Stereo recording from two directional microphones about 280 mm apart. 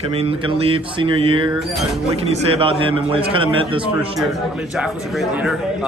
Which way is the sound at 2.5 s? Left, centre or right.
Centre.